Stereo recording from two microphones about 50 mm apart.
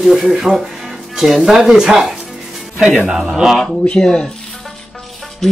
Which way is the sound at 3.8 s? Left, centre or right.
Centre.